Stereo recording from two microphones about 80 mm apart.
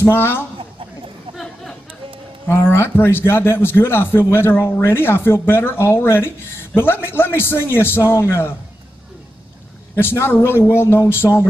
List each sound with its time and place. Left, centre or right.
0.0 s a man's voice: left
1.3 s chatter: centre
2.5 s a man's voice: left
9.9 s a man's voice: left